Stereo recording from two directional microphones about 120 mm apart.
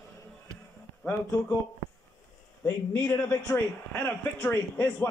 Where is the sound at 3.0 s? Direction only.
20° left (ahead or behind).